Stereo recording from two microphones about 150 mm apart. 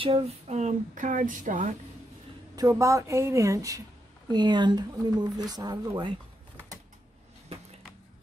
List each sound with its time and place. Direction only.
0.0 s speech: 45° right (ahead or behind)
2.5 s speech: 20° right (ahead or behind)